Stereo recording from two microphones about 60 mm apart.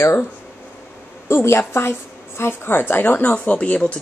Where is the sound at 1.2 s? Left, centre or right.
Left.